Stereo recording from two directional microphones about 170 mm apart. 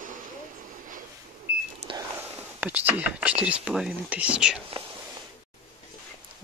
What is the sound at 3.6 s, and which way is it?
Speech, 5° right (ahead or behind).